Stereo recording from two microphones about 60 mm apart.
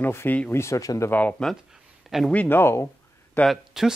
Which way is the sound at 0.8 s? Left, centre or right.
Left.